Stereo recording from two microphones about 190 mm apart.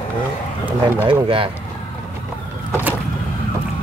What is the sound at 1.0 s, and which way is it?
Speech, 25° right (ahead or behind).